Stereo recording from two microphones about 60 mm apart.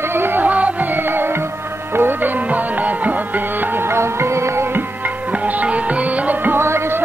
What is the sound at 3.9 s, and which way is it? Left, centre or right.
Music, right.